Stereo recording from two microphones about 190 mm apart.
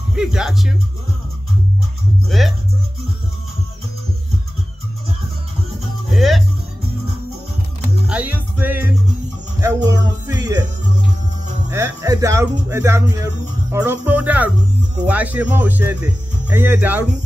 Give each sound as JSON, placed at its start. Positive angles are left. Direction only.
{"t": 0.1, "sound": "speech", "side_deg": -5}
{"t": 2.2, "sound": "speech", "side_deg": 0}
{"t": 6.1, "sound": "music", "side_deg": 0}
{"t": 8.1, "sound": "music", "side_deg": -10}
{"t": 9.8, "sound": "music", "side_deg": -15}
{"t": 11.7, "sound": "speech", "side_deg": -15}